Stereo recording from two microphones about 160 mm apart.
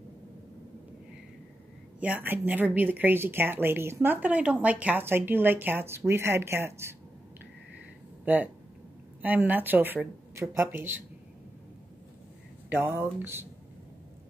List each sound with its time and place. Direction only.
2.0 s a woman's voice: 10° right (ahead or behind)
8.3 s a woman's voice: 10° right (ahead or behind)
12.6 s a sound: 10° right (ahead or behind)
13.2 s a woman's voice: 15° right (ahead or behind)